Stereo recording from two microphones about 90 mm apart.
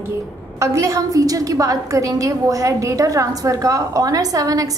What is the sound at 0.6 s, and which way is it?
A woman's voice, 35° right (ahead or behind).